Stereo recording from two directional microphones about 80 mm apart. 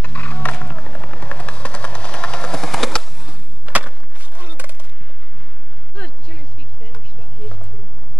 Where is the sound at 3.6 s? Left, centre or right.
Centre.